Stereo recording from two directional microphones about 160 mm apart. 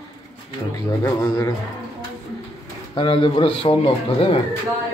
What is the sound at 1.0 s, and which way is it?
Speech, 15° left (ahead or behind).